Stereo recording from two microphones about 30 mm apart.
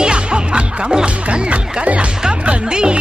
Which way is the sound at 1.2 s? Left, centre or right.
Right.